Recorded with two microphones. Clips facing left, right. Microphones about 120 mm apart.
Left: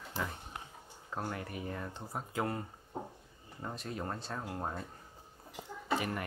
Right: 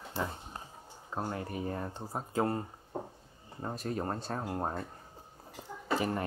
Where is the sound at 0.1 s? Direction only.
25° right (ahead or behind).